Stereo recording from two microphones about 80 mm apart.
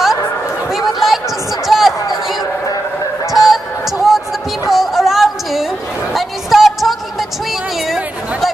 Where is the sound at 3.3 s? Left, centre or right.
Centre.